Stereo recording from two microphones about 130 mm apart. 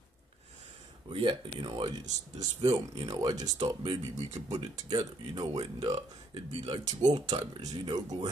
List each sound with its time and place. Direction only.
1.1 s speech: 40° right (ahead or behind)
3.5 s speech: 45° right (ahead or behind)
6.6 s speech: 50° right (ahead or behind)
7.0 s speech: 30° right (ahead or behind)